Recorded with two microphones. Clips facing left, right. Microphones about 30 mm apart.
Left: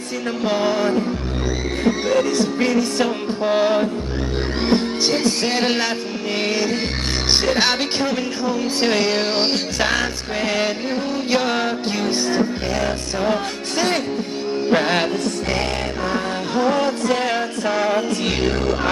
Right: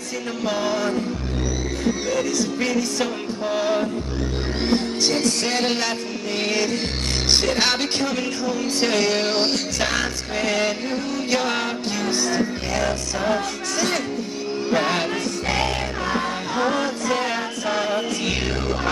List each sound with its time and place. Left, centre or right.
0.5 s music: left
1.9 s music: left
3.4 s music: left
4.6 s music: centre
6.4 s a woman's voice: centre
11.2 s music: centre
13.7 s music: left
17.8 s music: left